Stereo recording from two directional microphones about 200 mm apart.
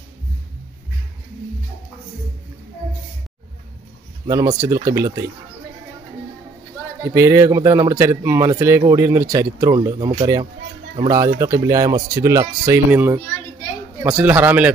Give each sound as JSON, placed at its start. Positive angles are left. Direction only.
{"t": 4.3, "sound": "speech", "side_deg": -15}
{"t": 7.0, "sound": "speech", "side_deg": -15}